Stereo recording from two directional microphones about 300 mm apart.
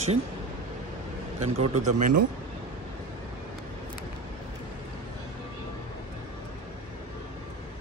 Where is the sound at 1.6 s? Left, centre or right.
Right.